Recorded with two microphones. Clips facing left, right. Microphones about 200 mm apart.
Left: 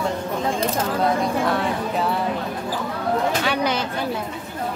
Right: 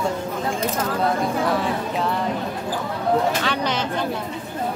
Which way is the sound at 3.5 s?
10° left (ahead or behind).